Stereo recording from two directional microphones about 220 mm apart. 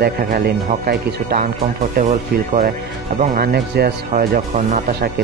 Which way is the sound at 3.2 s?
40° right (ahead or behind).